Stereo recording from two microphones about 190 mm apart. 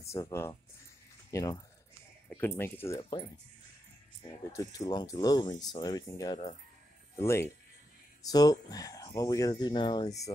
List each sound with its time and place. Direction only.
0.0 s speech: 15° left (ahead or behind)
4.5 s speech: 20° left (ahead or behind)